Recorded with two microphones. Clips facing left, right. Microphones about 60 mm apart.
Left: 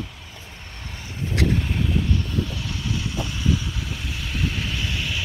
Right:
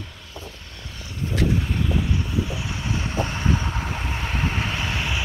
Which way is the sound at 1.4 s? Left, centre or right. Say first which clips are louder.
Even; left.